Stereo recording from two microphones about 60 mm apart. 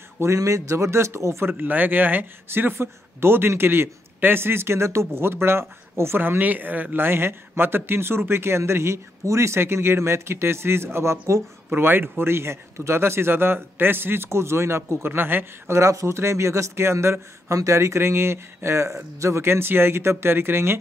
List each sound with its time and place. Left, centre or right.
0.2 s speech: right
1.5 s speech: right
11.7 s speech: right
15.7 s speech: right
19.4 s speech: right